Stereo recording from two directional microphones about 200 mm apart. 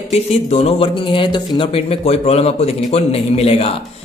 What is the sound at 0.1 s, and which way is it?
A man's voice, 30° left (ahead or behind).